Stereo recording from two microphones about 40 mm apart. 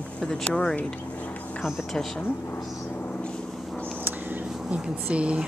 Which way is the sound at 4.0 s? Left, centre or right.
Right.